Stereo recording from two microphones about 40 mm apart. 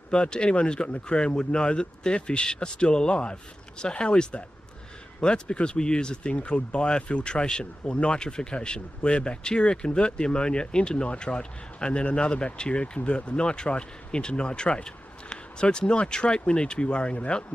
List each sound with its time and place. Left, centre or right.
0.1 s speech: left